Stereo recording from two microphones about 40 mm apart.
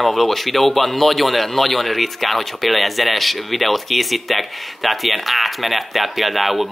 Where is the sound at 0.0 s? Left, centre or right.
Centre.